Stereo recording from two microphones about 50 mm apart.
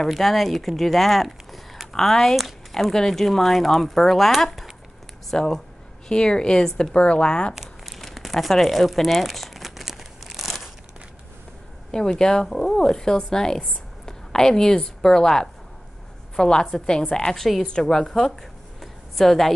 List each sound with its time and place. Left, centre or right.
0.0 s speech: centre
7.5 s crumpling: centre
11.9 s a woman's voice: centre